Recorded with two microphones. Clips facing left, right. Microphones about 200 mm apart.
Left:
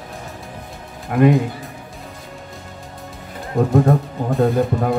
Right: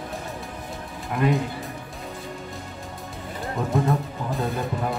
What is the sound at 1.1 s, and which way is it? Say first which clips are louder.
Speech: left 8 dB; 55° left (ahead or behind).